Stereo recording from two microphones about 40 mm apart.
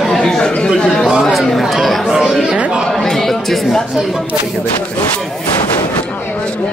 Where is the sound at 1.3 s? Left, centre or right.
Centre.